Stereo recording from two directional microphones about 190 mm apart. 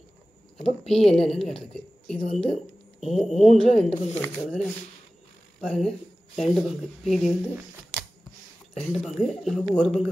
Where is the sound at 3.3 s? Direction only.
35° left (ahead or behind).